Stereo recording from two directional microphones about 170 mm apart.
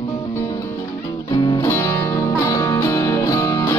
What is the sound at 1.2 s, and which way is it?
Music, 20° left (ahead or behind).